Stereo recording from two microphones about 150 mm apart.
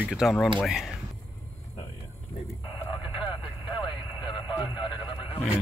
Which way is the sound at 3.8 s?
30° left (ahead or behind).